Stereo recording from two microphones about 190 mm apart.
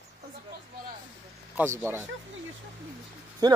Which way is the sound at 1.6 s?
10° right (ahead or behind).